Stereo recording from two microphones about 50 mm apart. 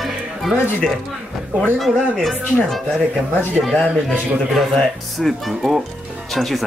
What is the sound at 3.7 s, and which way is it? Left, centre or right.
Speech, centre.